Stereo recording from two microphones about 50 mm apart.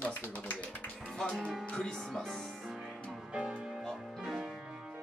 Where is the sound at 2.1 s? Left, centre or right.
Centre.